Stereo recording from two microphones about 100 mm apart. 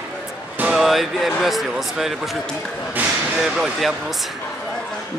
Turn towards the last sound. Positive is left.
turn(degrees=0)  # may be behind; listen again after turning